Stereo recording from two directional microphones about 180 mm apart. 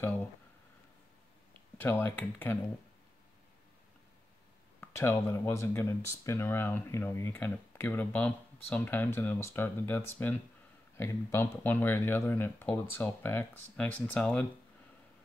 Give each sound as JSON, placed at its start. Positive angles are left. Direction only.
{"t": 0.0, "sound": "a sound", "side_deg": 10}
{"t": 1.8, "sound": "speech", "side_deg": 10}
{"t": 4.7, "sound": "speech", "side_deg": 15}